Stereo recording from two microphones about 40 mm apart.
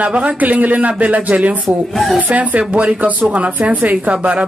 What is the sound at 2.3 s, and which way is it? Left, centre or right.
A woman's voice, right.